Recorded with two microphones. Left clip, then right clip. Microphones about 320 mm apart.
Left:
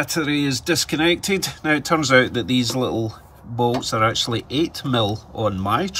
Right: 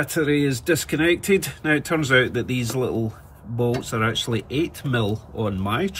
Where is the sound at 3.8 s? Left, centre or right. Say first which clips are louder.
Left 4 dB; centre.